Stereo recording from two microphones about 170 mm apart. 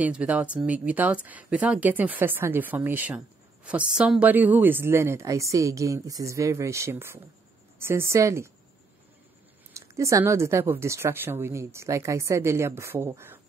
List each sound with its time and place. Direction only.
0.0 s speech: 10° right (ahead or behind)
9.8 s speech: 15° right (ahead or behind)